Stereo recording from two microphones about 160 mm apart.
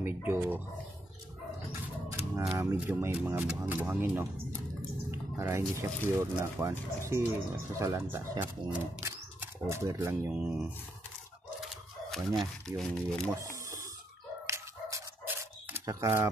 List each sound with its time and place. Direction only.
0.0 s speech: 10° right (ahead or behind)
1.7 s a sound: 15° right (ahead or behind)
2.5 s speech: 15° right (ahead or behind)
5.4 s speech: 15° right (ahead or behind)
12.4 s speech: centre (ahead or behind)
14.4 s dog: 20° right (ahead or behind)